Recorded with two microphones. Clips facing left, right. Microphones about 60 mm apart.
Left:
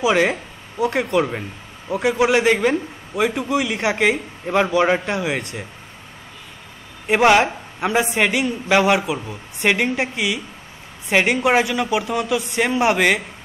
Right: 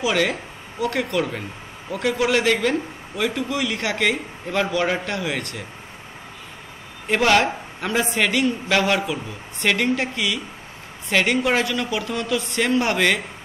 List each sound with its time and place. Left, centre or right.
0.0 s a man's voice: left
7.1 s a man's voice: centre